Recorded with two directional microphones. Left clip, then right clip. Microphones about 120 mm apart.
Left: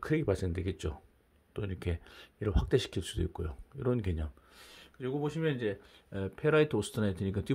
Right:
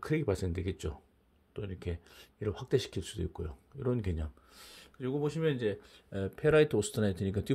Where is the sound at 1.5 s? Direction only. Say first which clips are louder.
Left 2 dB; 30° left (ahead or behind).